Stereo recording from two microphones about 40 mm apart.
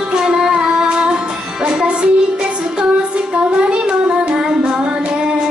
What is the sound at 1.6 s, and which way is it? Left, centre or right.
Music, right.